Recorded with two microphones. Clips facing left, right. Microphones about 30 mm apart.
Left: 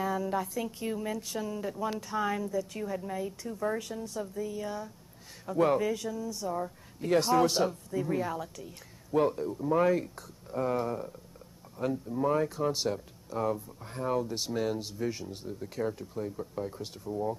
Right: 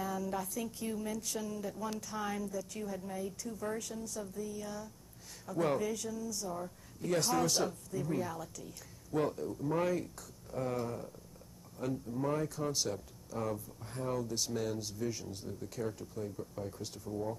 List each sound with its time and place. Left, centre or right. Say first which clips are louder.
0.0 s speech: left 6 dB; left